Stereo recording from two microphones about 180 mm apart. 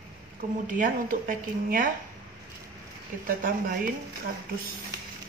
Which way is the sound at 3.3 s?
50° right (ahead or behind).